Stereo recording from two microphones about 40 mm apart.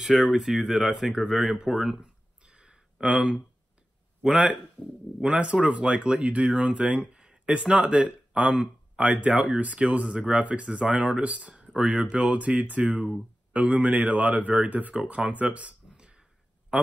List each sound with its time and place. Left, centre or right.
0.3 s speech: centre
2.0 s a sound: right
4.2 s speech: right